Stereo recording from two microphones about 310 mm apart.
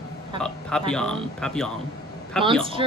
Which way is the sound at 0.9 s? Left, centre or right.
Centre.